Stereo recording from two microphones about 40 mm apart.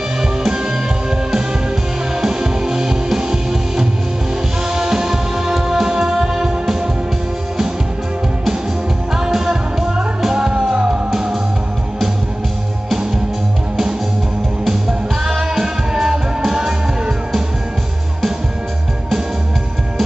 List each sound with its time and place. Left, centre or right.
0.5 s music: centre
2.2 s music: centre
9.1 s music: centre
14.7 s music: centre